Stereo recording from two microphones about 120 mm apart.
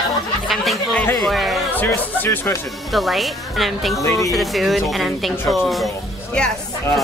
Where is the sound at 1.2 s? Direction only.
Centre (ahead or behind).